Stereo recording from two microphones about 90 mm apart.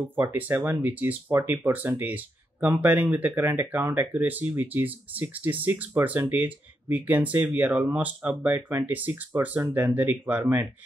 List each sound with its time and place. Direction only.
0.0 s speech: 25° right (ahead or behind)